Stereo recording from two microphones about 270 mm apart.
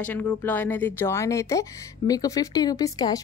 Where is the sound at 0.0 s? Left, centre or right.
Centre.